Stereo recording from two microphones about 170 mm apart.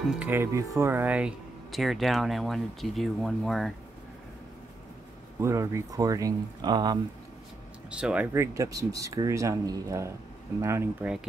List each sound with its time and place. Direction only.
0.1 s speech: 10° right (ahead or behind)
5.4 s speech: 15° right (ahead or behind)
7.9 s speech: 5° right (ahead or behind)